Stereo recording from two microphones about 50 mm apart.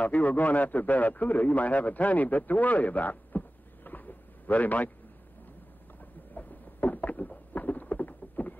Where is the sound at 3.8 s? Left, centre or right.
Left.